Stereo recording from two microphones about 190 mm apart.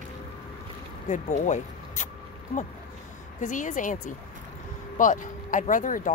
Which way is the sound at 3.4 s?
40° left (ahead or behind).